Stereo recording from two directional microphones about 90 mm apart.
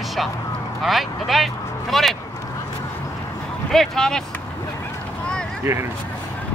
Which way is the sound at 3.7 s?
5° left (ahead or behind).